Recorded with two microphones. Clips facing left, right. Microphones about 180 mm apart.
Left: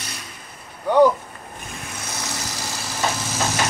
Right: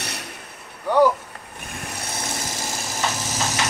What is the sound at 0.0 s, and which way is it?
Vehicle, 65° right (ahead or behind).